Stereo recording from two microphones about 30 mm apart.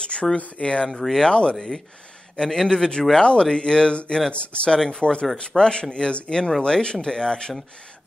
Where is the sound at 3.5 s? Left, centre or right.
Left.